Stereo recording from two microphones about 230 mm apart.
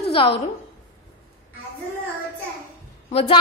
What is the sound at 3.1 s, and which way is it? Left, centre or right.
Speech, left.